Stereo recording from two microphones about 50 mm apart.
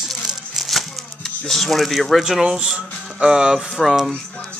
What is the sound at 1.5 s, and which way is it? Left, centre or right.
Speech, centre.